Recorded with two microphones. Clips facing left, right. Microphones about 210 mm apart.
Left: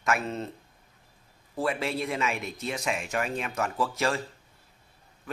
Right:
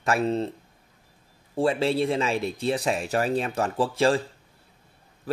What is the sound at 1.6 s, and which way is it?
Speech, 30° right (ahead or behind).